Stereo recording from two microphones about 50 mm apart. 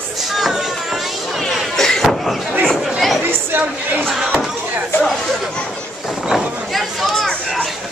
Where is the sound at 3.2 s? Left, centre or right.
Right.